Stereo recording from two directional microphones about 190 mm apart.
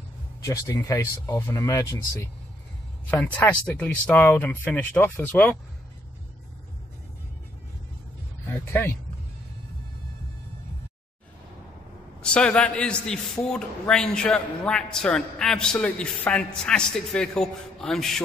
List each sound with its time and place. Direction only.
0.5 s speech: 15° left (ahead or behind)
3.1 s speech: 10° left (ahead or behind)
8.5 s speech: 10° left (ahead or behind)
12.2 s a man's voice: 5° left (ahead or behind)